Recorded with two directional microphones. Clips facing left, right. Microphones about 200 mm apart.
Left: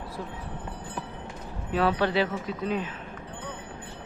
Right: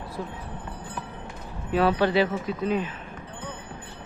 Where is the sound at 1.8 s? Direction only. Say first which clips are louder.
Right 3 dB; 5° right (ahead or behind).